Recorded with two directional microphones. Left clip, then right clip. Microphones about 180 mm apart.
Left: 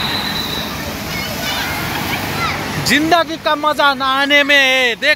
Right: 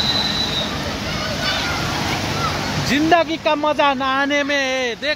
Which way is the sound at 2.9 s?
10° right (ahead or behind).